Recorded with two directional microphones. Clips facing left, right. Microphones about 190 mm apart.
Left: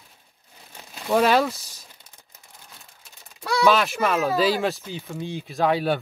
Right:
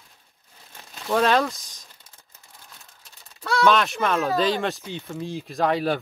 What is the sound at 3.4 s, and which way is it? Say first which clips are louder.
Speech: even; 10° left (ahead or behind).